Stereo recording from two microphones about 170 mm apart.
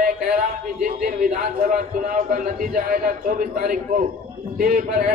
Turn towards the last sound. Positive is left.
turn(degrees=-55)  # may be behind; listen again after turning